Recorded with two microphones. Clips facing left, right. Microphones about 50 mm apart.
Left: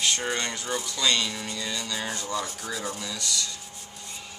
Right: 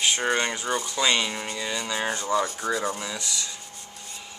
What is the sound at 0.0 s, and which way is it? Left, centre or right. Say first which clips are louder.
Speech: right 4 dB; centre.